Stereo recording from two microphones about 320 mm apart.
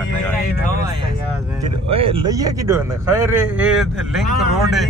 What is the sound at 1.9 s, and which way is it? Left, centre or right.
Speech, centre.